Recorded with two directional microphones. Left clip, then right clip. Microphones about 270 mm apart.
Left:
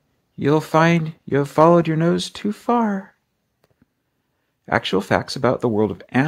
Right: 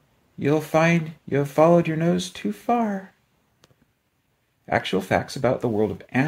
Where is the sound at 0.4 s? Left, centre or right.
Left.